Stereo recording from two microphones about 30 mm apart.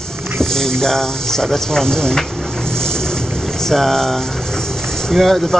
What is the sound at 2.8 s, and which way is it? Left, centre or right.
Boat, left.